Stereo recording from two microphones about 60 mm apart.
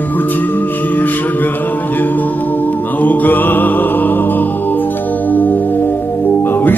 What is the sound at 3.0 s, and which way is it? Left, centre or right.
Mantra, left.